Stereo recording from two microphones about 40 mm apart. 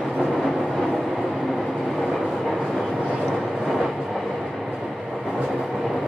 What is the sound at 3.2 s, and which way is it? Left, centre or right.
Vehicle, centre.